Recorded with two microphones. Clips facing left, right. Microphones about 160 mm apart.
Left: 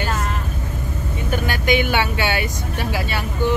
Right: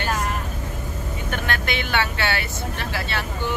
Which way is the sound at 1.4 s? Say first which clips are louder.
Left 9 dB; 10° left (ahead or behind).